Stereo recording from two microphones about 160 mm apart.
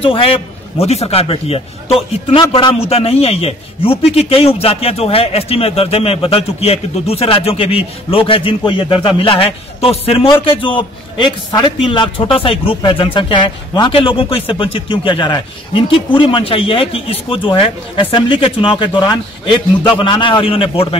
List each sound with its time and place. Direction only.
0.0 s a man's voice: 35° left (ahead or behind)